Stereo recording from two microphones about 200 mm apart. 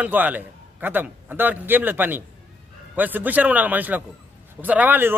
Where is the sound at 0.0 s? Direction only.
10° right (ahead or behind).